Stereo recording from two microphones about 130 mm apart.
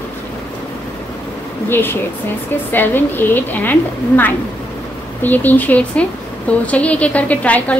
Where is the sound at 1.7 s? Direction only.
15° left (ahead or behind).